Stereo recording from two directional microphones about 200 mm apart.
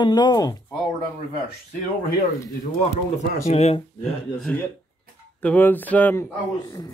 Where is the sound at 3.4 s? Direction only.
30° left (ahead or behind).